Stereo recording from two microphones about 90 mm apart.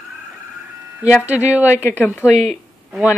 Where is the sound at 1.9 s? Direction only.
30° left (ahead or behind).